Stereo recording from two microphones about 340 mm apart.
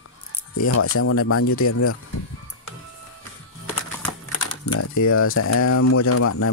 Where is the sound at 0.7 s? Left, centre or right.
Left.